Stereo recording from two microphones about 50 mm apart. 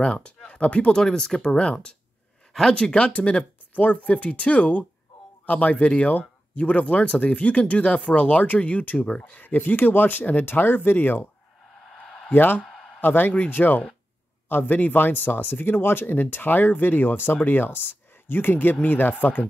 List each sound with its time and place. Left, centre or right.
0.0 s speech: left
0.9 s speech: centre
9.2 s speech: left
11.9 s a sound: centre
12.3 s speech: left
12.6 s a sound: centre
13.0 s speech: left